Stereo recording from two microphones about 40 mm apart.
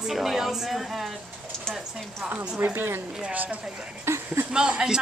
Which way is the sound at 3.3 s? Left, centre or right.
Right.